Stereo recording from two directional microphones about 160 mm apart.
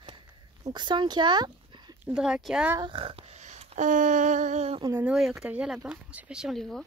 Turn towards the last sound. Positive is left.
turn(degrees=0)  # may be behind; listen again after turning